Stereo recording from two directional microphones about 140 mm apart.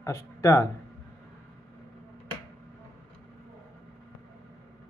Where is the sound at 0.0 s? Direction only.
20° left (ahead or behind).